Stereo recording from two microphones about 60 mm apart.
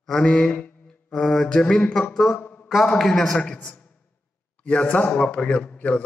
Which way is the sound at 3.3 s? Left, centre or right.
Centre.